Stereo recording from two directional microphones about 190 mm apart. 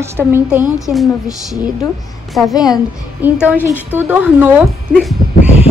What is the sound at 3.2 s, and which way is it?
A woman's voice, 10° right (ahead or behind).